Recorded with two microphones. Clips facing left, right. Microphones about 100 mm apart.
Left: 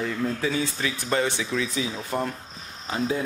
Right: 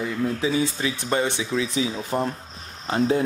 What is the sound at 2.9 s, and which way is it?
Speech, 45° right (ahead or behind).